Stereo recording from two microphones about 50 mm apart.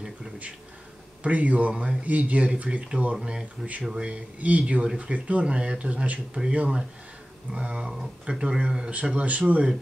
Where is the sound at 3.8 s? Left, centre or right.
Centre.